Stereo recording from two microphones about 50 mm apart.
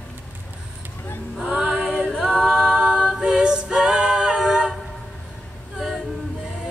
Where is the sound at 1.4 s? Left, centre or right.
Centre.